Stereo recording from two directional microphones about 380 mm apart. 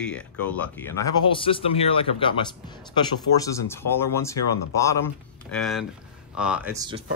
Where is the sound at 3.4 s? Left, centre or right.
Centre.